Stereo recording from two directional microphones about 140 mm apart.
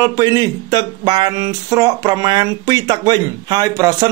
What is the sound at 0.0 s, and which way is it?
Speech, 25° right (ahead or behind).